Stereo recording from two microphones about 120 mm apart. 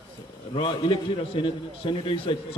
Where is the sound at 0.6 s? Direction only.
45° left (ahead or behind).